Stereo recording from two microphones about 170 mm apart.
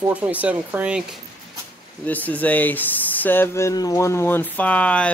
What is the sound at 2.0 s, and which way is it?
Speech, 10° left (ahead or behind).